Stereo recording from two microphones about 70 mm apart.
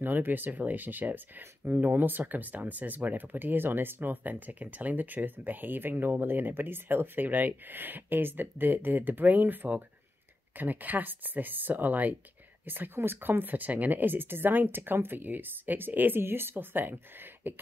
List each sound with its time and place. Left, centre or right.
0.0 s speech: right